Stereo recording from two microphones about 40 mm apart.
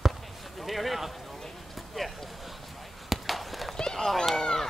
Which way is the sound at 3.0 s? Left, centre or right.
Centre.